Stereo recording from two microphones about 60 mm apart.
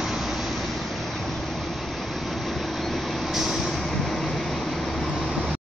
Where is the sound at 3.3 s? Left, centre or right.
Centre.